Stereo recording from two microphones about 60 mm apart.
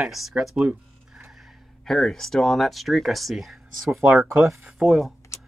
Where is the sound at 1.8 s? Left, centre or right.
Centre.